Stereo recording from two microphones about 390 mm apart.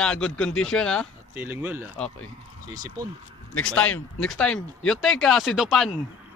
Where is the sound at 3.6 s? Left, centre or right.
Centre.